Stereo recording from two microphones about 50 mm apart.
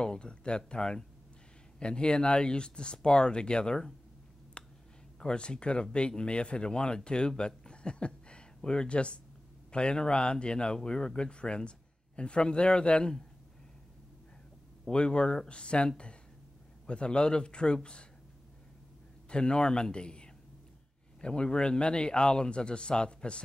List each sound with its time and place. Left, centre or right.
0.0 s a man's voice: centre
4.6 s a sound: left
5.2 s a man's voice: centre
14.9 s a man's voice: centre
19.2 s a man's voice: centre